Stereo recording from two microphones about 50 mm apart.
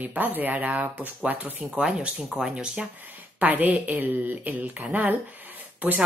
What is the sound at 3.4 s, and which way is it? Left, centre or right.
A woman's voice, right.